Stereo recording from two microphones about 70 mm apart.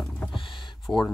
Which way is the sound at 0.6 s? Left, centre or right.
Left.